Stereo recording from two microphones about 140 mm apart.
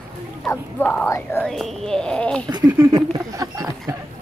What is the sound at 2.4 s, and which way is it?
Speech, 30° right (ahead or behind).